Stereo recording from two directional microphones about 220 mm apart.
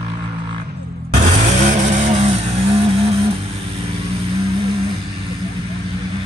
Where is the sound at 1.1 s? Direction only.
35° right (ahead or behind).